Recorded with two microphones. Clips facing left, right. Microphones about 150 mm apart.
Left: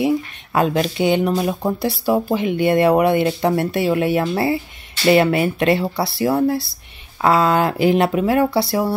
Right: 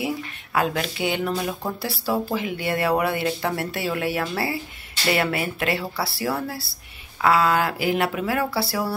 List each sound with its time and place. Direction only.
1.0 s speech: 20° left (ahead or behind)